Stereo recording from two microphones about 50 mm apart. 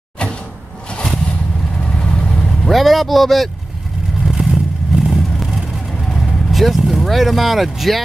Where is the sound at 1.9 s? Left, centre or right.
Centre.